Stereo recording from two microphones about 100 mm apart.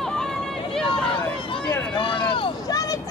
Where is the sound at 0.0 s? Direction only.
5° left (ahead or behind).